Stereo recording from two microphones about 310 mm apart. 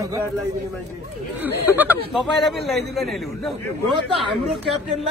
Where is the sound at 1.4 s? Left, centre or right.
Centre.